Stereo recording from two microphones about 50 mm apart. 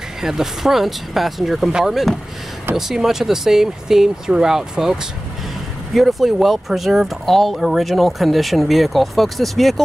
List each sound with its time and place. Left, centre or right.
0.2 s speech: centre
1.7 s speech: centre
5.9 s speech: centre